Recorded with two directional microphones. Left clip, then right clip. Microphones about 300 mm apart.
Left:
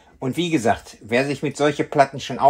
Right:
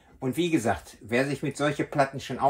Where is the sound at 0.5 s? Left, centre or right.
Left.